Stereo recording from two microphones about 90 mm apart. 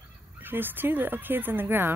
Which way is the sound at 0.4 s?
20° right (ahead or behind).